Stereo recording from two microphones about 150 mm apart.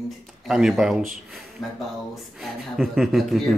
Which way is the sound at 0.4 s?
5° right (ahead or behind).